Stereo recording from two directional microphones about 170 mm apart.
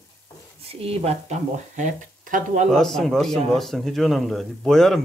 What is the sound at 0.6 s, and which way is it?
Speech, 35° right (ahead or behind).